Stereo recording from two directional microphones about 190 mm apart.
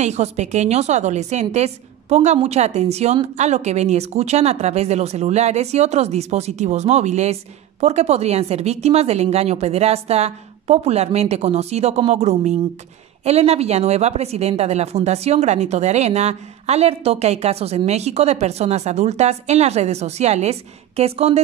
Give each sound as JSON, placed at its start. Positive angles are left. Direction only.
{"t": 0.0, "sound": "speech", "side_deg": -35}